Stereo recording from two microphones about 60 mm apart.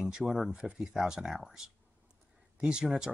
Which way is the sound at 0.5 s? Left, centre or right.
Right.